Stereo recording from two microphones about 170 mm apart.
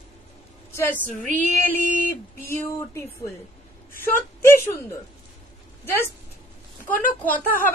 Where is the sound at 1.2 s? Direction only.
50° right (ahead or behind).